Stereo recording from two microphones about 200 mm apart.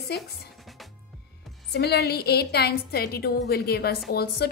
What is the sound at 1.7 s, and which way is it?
A woman's voice, 55° left (ahead or behind).